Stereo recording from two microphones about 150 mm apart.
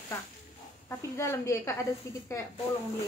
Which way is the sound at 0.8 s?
20° left (ahead or behind).